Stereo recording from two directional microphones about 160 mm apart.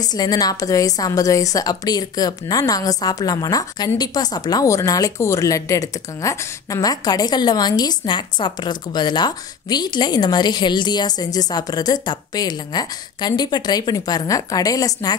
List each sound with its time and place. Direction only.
0.0 s a woman's voice: 25° left (ahead or behind)